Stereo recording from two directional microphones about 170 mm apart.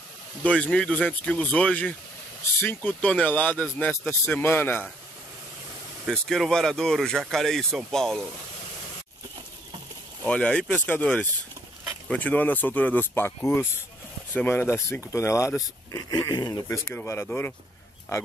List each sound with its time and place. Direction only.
0.4 s speech: 5° left (ahead or behind)
6.0 s speech: centre (ahead or behind)
10.2 s speech: 5° left (ahead or behind)